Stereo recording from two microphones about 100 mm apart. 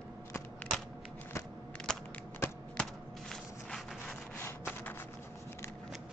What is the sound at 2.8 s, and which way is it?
Walk, 5° left (ahead or behind).